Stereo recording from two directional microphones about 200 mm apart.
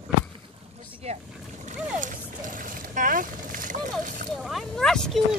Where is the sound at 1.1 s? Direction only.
30° right (ahead or behind).